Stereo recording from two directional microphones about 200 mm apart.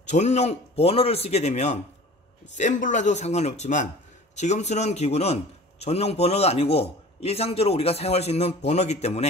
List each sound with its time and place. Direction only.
0.0 s a man's voice: 35° left (ahead or behind)